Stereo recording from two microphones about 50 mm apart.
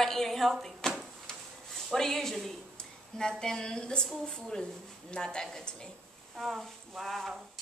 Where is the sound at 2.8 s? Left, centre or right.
Centre.